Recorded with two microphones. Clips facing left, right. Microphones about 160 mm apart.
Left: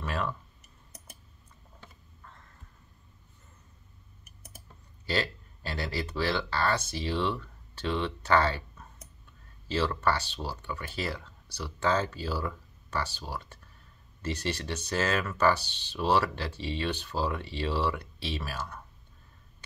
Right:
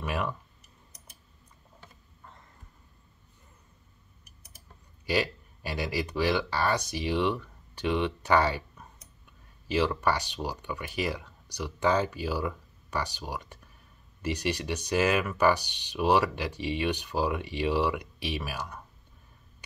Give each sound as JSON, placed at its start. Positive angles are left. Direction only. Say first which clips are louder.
{"t": 0.0, "sound": "clicking", "louder": "right 1 dB", "side_deg": -15}
{"t": 4.2, "sound": "a sound", "louder": "left 7 dB", "side_deg": 50}
{"t": 5.0, "sound": "speech", "louder": "right 3 dB", "side_deg": -15}